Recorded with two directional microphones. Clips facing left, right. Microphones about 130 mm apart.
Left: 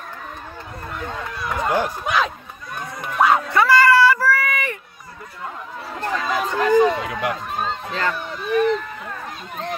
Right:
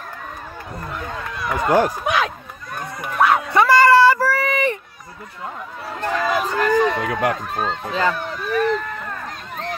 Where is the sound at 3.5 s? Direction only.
20° right (ahead or behind).